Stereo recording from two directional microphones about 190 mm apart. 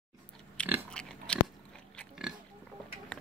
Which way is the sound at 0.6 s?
5° left (ahead or behind).